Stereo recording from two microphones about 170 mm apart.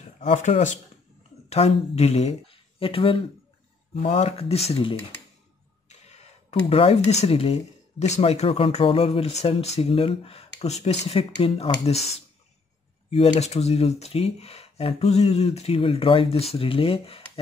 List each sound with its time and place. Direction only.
0.2 s speech: 45° left (ahead or behind)
5.9 s cough: 40° left (ahead or behind)
6.7 s speech: 35° left (ahead or behind)
13.1 s speech: 40° left (ahead or behind)